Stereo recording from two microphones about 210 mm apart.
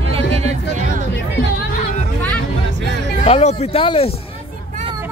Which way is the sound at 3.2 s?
30° left (ahead or behind).